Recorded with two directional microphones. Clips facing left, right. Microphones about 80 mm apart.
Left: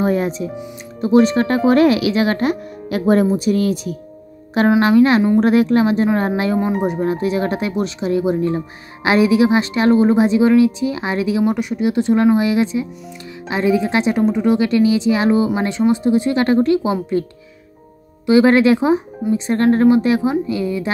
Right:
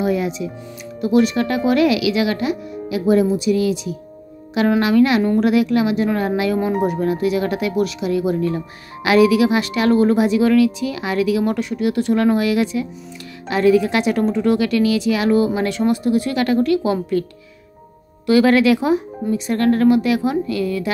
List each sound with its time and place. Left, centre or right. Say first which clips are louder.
0.0 s music: left 2 dB; left
1.0 s speech: left 3 dB; left
4.6 s speech: left 2 dB; left
18.2 s speech: left 2 dB; left